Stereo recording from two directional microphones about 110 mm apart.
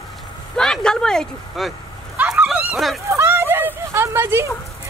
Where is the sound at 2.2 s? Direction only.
10° right (ahead or behind).